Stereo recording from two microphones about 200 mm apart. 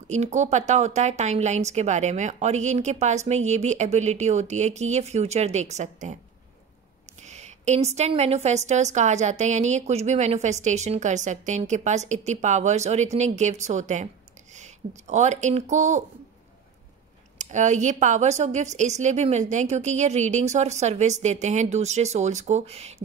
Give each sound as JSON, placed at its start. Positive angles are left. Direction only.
{"t": 0.1, "sound": "a woman's voice", "side_deg": -35}
{"t": 7.2, "sound": "a woman's voice", "side_deg": -35}
{"t": 17.4, "sound": "a woman's voice", "side_deg": -35}